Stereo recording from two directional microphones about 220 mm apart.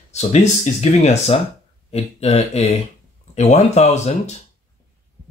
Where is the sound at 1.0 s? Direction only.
30° left (ahead or behind).